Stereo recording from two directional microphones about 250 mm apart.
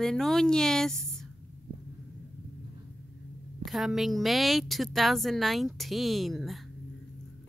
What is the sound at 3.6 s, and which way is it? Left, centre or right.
A woman's voice, centre.